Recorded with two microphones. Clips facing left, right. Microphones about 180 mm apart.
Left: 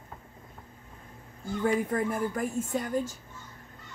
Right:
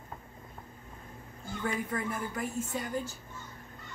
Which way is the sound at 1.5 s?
50° left (ahead or behind).